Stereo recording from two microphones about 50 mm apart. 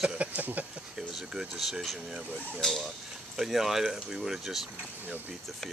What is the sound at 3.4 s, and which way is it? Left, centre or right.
Speech, centre.